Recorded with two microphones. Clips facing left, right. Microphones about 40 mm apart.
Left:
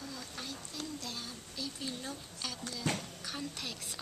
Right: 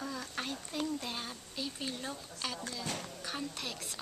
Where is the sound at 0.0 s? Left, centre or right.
Right.